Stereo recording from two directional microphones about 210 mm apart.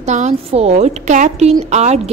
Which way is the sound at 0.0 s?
35° right (ahead or behind).